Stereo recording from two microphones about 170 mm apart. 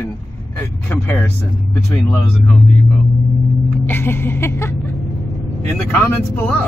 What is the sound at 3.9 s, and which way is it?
Speech, 15° left (ahead or behind).